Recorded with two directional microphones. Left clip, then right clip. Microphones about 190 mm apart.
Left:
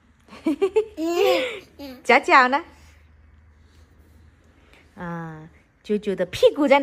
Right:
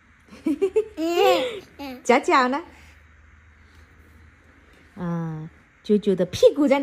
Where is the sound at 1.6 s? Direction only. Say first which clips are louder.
Right 3 dB; centre (ahead or behind).